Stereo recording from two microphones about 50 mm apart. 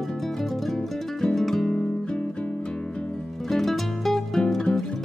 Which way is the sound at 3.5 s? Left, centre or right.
Centre.